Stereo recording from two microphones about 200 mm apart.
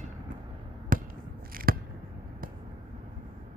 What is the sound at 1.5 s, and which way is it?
Scissors, 45° right (ahead or behind).